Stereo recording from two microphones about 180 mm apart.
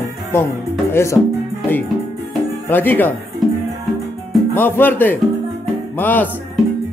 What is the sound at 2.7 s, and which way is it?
Speech, 10° left (ahead or behind).